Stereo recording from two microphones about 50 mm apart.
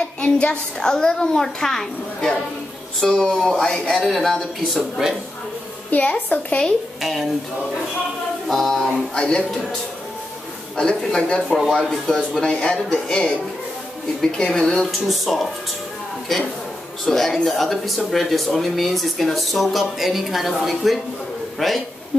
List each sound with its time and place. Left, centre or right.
0.2 s a child's voice: centre
3.9 s a child's voice: centre
4.7 s speech: centre
5.9 s a woman's voice: left
7.0 s speech: centre
8.5 s speech: centre
9.1 s speech: centre
10.8 s a child's voice: centre
11.5 s a child's voice: centre
17.0 s a child's voice: centre